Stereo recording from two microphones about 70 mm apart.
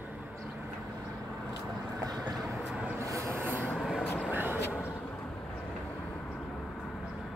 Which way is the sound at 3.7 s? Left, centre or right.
Centre.